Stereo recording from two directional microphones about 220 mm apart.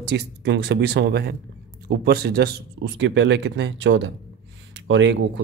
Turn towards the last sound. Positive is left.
turn(degrees=-55)  # may be behind; listen again after turning